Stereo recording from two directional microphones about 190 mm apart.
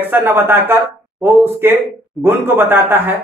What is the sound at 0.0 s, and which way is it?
Speech, 10° right (ahead or behind).